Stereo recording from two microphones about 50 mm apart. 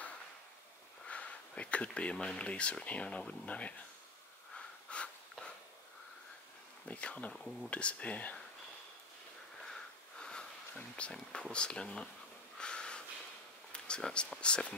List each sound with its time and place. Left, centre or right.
1.0 s a sound: left
2.1 s speech: centre
4.6 s a sound: left
6.9 s speech: left
7.3 s speech: centre
7.7 s speech: left
9.7 s sniff: centre
11.0 s speech: centre
12.5 s a sound: centre
14.4 s speech: centre